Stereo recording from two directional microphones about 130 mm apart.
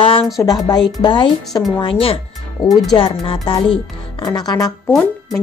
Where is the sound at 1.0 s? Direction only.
40° left (ahead or behind).